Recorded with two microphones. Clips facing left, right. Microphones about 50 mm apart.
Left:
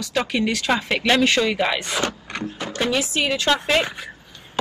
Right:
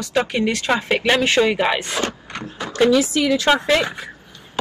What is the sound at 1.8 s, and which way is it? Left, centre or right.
Speech, right.